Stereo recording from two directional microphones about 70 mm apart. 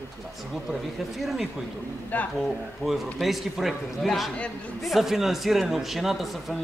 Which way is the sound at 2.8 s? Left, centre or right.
Centre.